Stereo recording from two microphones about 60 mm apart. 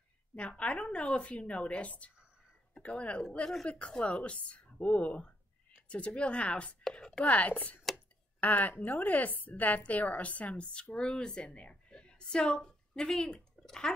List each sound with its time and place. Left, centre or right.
0.4 s a woman's voice: centre